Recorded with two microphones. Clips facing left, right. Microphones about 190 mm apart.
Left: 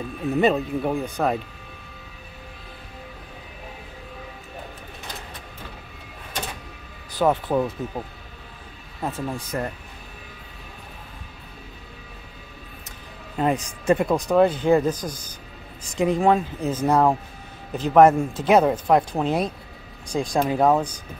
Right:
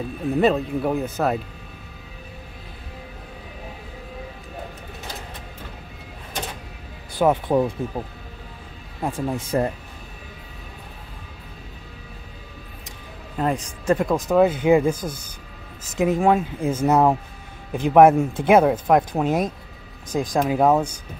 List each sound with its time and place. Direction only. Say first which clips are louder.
0.4 s speech: right 1 dB; centre (ahead or behind)
7.2 s speech: right 2 dB; 10° right (ahead or behind)
9.0 s speech: right 3 dB; 15° right (ahead or behind)
9.4 s speech: right 6 dB; 25° right (ahead or behind)
13.4 s speech: left 1 dB; 5° left (ahead or behind); by 15.0 s 10° right (ahead or behind)
16.0 s speech: right 1 dB; 5° right (ahead or behind)